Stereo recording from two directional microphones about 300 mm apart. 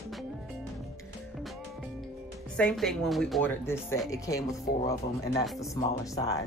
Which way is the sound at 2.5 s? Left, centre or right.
Centre.